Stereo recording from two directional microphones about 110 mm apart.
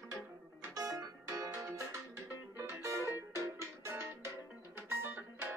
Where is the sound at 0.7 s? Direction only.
30° right (ahead or behind).